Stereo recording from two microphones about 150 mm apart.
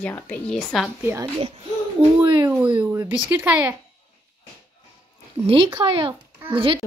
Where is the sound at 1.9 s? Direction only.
30° right (ahead or behind).